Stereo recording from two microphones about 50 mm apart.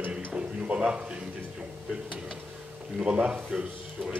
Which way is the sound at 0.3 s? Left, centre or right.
Right.